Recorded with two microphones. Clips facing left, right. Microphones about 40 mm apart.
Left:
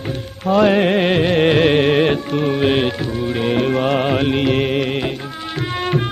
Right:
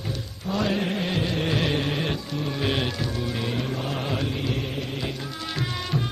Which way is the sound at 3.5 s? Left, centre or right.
Left.